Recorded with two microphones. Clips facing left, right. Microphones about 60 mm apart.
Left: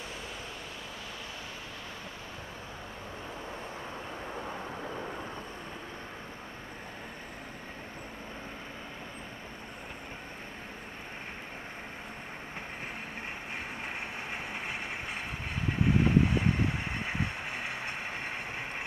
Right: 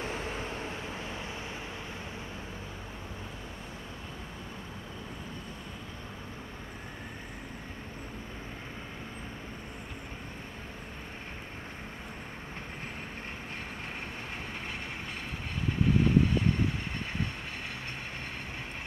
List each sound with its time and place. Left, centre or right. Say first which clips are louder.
0.0 s waves: right 6 dB; right
15.8 s vehicle: even; left